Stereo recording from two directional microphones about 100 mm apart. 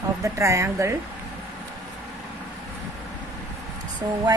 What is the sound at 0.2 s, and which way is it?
Speech, 30° right (ahead or behind).